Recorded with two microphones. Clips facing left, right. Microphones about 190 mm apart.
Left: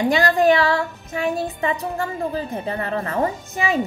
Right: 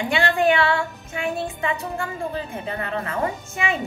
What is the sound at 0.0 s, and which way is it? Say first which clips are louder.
A woman's voice: left 3 dB; 40° left (ahead or behind).